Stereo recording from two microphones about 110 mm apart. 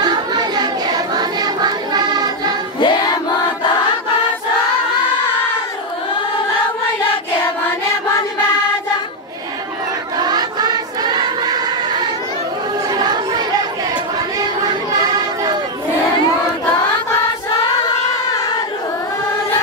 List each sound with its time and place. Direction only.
0.0 s a sound: 40° right (ahead or behind)
1.1 s music: 40° right (ahead or behind)
2.8 s choir: 45° left (ahead or behind)
10.1 s choir: 40° right (ahead or behind)
12.9 s chatter: 40° right (ahead or behind)
14.7 s a sound: 35° right (ahead or behind)